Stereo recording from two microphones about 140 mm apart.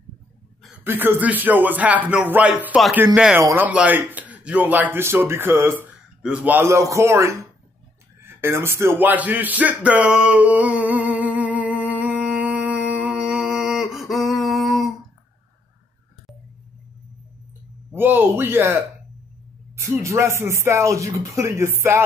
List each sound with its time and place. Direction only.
0.8 s a man's voice: 15° right (ahead or behind)
8.2 s a sound: 15° right (ahead or behind); by 14.9 s centre (ahead or behind)
17.9 s a man's voice: 15° right (ahead or behind)